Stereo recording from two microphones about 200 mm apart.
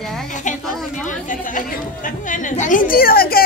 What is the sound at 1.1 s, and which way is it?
A woman's voice, 40° left (ahead or behind).